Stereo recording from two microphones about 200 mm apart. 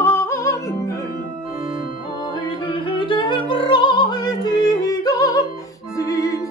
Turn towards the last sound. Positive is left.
turn(degrees=20)  # may be behind; listen again after turning